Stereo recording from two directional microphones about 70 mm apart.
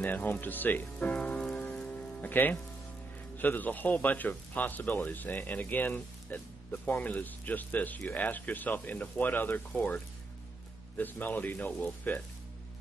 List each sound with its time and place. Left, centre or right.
0.0 s a man's voice: left
0.9 s rain on surface: centre
3.3 s a man's voice: left